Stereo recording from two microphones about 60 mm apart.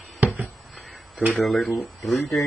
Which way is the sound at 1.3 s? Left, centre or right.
Centre.